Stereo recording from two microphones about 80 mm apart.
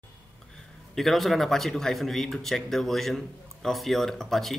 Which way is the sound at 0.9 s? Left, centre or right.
Centre.